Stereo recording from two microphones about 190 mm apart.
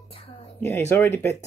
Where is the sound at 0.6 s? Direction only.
10° left (ahead or behind).